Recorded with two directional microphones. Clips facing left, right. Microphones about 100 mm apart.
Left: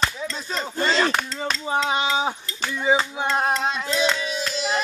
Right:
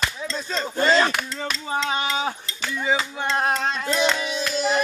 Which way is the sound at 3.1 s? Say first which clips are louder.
Left 1 dB; 10° left (ahead or behind).